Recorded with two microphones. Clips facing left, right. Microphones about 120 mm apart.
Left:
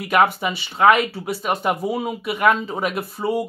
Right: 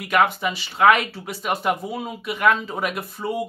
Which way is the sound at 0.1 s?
5° left (ahead or behind).